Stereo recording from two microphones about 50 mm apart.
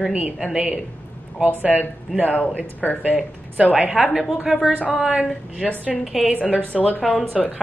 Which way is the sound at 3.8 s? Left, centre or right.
Centre.